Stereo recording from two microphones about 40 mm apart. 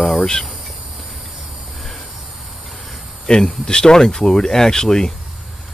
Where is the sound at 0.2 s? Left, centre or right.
Centre.